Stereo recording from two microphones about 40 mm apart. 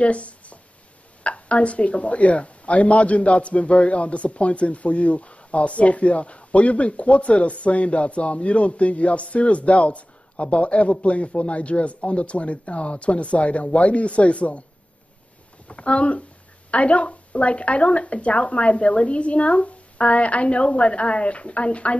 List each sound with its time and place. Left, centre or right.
0.0 s speech: left
15.7 s speech: left